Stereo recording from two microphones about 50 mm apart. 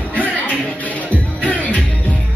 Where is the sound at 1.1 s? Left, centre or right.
Left.